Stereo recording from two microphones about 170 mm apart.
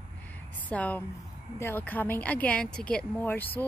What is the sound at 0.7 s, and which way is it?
Speech, 10° left (ahead or behind).